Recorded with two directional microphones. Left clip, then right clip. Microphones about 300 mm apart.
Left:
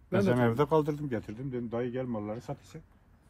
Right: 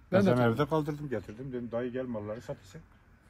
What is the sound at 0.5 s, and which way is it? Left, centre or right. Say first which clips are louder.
Speech: left 3 dB; centre.